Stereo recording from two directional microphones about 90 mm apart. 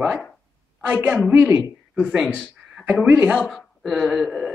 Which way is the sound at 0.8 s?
20° right (ahead or behind).